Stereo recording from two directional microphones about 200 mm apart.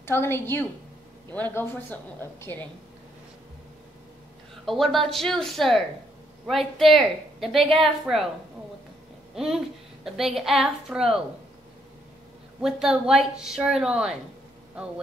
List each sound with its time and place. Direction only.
0.0 s a woman's voice: 10° left (ahead or behind)
4.6 s a woman's voice: centre (ahead or behind)
9.3 s a woman's voice: centre (ahead or behind)
12.6 s a woman's voice: 5° right (ahead or behind)